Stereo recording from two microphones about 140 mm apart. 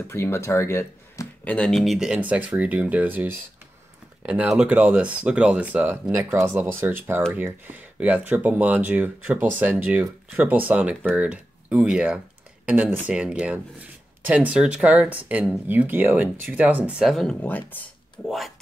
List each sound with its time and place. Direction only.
0.1 s speech: 20° left (ahead or behind)